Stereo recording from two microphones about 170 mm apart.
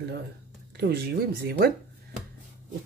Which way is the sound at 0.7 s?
70° right (ahead or behind).